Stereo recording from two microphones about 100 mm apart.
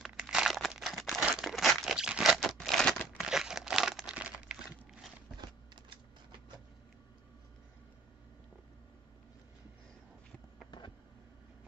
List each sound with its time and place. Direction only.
0.0 s crumpling: 5° right (ahead or behind)